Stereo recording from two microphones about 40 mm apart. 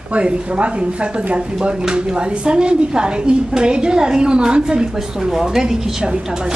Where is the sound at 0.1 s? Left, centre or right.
Right.